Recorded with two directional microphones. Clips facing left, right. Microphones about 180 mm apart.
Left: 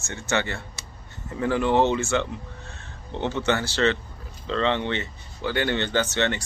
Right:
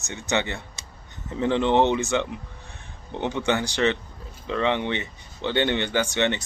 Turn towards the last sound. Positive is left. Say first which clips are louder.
# right 1 dB
turn(degrees=-15)  # may be behind; listen again after turning